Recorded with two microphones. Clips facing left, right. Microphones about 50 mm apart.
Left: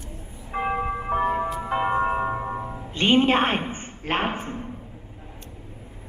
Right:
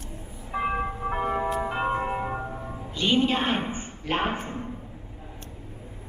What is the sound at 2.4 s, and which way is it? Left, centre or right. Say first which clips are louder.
Music: left 5 dB; left.